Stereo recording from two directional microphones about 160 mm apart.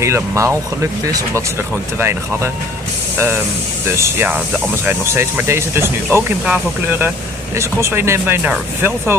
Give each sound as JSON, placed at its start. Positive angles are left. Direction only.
{"t": 0.0, "sound": "speech", "side_deg": -15}
{"t": 2.0, "sound": "speech", "side_deg": -15}
{"t": 3.9, "sound": "speech", "side_deg": -15}